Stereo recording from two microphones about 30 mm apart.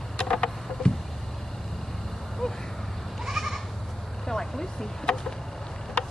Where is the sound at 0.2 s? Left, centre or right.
Left.